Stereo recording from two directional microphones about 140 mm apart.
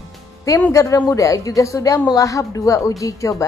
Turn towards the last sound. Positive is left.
turn(degrees=25)  # may be behind; listen again after turning